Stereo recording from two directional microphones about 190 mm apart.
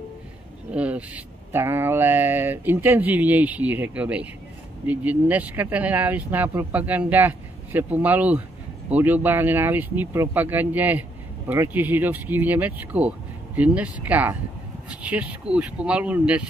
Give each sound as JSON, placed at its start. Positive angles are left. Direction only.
{"t": 0.7, "sound": "speech", "side_deg": -5}